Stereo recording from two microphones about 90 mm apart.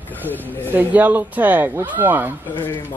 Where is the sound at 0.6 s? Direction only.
20° right (ahead or behind).